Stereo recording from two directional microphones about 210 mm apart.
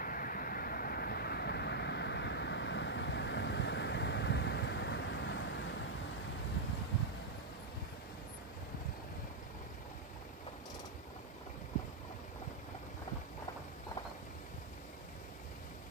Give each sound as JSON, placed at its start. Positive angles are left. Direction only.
{"t": 0.0, "sound": "vehicle", "side_deg": 40}